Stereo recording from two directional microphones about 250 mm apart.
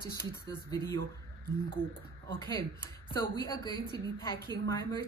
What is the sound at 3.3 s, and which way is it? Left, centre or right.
A woman's voice, centre.